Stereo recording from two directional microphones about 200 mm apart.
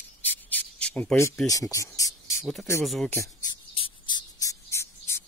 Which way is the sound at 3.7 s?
25° left (ahead or behind).